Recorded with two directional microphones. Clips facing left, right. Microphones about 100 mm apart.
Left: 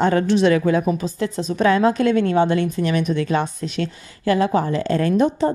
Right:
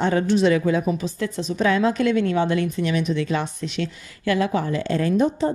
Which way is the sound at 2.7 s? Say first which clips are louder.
Left 2 dB; 50° left (ahead or behind).